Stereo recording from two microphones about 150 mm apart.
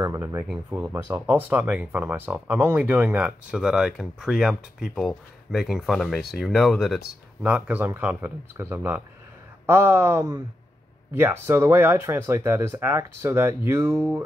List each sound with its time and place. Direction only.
0.0 s speech: 20° right (ahead or behind)